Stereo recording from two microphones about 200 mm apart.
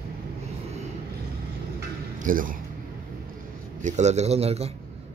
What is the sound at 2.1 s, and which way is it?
Speech, 40° right (ahead or behind).